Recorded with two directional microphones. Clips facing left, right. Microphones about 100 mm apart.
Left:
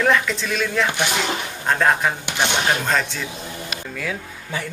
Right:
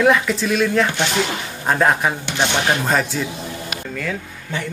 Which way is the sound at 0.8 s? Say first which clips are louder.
Right 1 dB; 15° left (ahead or behind).